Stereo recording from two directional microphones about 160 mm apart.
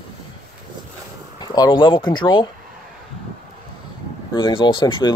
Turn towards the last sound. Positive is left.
turn(degrees=30)  # may be behind; listen again after turning